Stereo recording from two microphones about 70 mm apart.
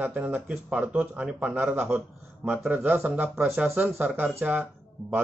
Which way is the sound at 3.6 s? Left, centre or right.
Right.